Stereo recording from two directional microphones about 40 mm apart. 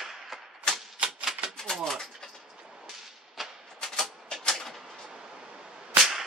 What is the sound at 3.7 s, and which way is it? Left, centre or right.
Typewriter, centre.